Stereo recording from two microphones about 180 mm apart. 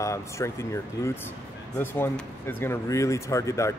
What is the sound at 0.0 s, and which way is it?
Speech, 15° left (ahead or behind).